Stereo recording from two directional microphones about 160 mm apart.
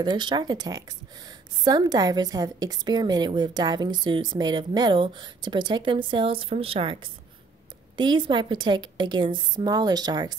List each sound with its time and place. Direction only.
0.0 s a woman's voice: 25° right (ahead or behind)
8.0 s a woman's voice: 30° right (ahead or behind)